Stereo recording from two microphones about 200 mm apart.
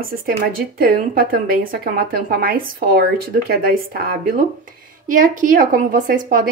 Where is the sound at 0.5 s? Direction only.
45° right (ahead or behind).